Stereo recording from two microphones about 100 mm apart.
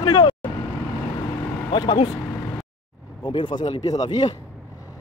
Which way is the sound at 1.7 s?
45° left (ahead or behind).